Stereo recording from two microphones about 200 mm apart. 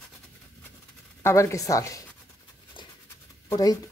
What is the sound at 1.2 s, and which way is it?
Speech, 15° left (ahead or behind).